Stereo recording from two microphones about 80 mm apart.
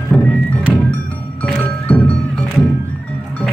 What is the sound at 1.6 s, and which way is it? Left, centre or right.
Music, centre.